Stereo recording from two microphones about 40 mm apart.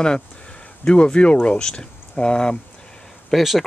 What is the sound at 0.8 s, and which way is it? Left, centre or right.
Speech, left.